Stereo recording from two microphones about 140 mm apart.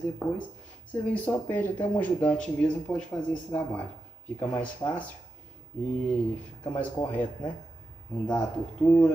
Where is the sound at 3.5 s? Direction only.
20° left (ahead or behind).